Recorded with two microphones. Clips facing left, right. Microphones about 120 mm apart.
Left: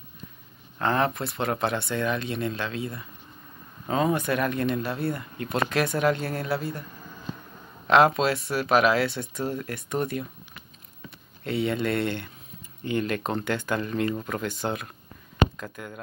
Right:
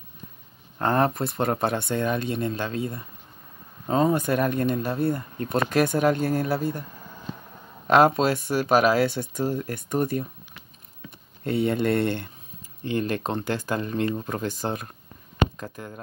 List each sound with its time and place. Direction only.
0.7 s speech: 40° right (ahead or behind)
7.9 s speech: 45° right (ahead or behind)
11.4 s speech: 50° right (ahead or behind)
12.9 s speech: 30° right (ahead or behind)